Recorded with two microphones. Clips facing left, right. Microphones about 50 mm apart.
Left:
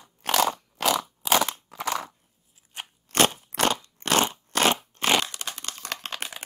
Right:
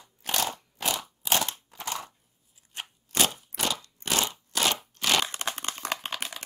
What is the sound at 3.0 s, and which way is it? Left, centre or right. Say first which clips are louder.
Crunch: left 5 dB; left.